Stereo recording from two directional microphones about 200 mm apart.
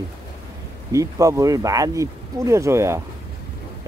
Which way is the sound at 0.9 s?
15° right (ahead or behind).